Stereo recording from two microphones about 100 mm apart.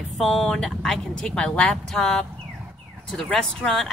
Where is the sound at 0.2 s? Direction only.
5° left (ahead or behind).